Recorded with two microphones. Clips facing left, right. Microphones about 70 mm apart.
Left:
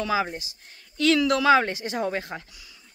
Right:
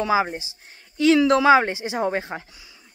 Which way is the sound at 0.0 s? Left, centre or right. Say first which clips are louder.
Right 4 dB; right.